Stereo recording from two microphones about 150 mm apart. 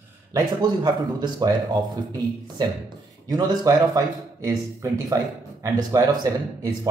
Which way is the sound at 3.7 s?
25° right (ahead or behind).